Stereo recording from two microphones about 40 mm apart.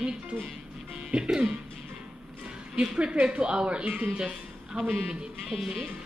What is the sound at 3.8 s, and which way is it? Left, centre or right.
Speech, right.